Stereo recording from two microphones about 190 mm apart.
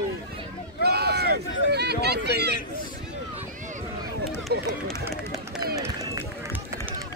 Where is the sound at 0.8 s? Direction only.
55° right (ahead or behind).